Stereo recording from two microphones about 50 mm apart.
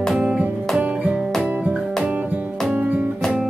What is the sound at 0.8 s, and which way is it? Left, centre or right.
Music, right.